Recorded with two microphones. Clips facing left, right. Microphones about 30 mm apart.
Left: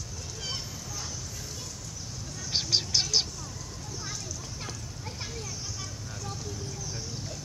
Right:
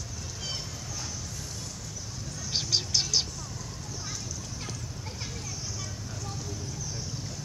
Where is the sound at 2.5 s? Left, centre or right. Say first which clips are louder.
Left 1 dB; centre.